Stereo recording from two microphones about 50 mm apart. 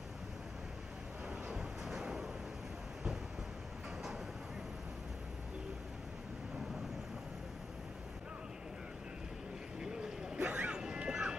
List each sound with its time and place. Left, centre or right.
1.5 s vehicle: centre
9.8 s vehicle: centre
10.5 s a sound: centre